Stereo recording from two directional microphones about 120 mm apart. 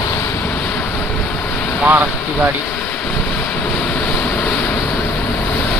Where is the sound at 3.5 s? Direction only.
10° left (ahead or behind).